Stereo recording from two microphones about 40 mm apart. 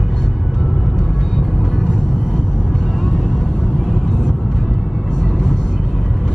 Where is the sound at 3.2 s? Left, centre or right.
Centre.